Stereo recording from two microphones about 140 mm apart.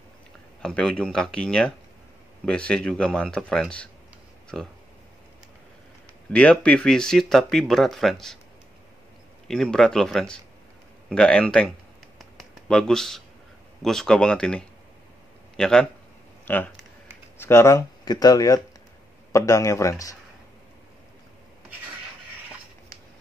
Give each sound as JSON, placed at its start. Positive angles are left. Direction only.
{"t": 0.6, "sound": "speech", "side_deg": 5}
{"t": 6.3, "sound": "speech", "side_deg": 10}
{"t": 9.5, "sound": "speech", "side_deg": 5}
{"t": 12.2, "sound": "a sound", "side_deg": 5}
{"t": 13.8, "sound": "a man's voice", "side_deg": 5}